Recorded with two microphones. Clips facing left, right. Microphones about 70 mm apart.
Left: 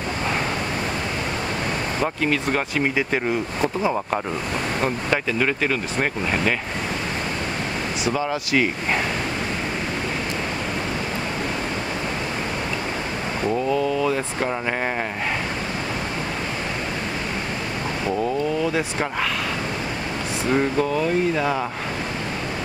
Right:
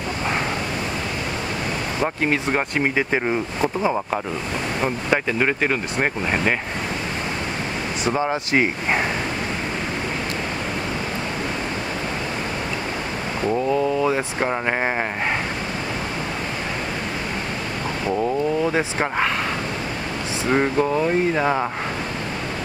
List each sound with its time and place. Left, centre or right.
2.2 s speech: right
3.6 s speech: centre
4.8 s speech: right
8.1 s speech: right
13.7 s speech: right
18.6 s speech: right
20.4 s speech: right